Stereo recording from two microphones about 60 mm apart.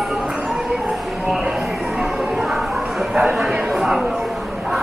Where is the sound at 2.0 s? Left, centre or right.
Centre.